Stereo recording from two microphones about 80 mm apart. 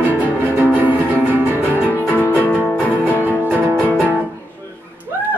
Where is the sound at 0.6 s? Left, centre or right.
Right.